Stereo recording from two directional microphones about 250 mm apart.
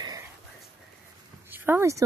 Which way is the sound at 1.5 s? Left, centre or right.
Centre.